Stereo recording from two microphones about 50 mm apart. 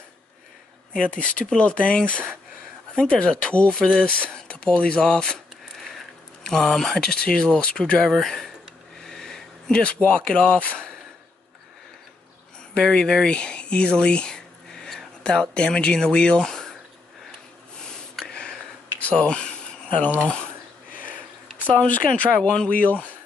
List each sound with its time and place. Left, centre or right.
0.9 s speech: left
6.4 s speech: centre
8.1 s speech: centre
9.0 s sniff: centre
9.7 s speech: left
12.8 s speech: centre
18.2 s a sound: centre
21.6 s speech: left